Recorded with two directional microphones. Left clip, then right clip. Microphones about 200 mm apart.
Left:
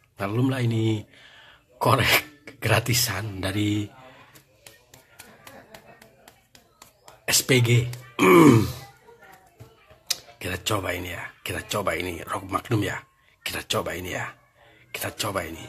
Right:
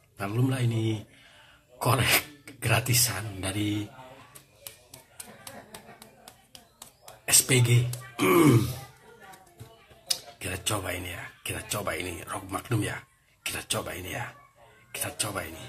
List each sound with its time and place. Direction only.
0.2 s a man's voice: 40° left (ahead or behind)
7.2 s speech: 40° left (ahead or behind)
10.0 s speech: 40° left (ahead or behind)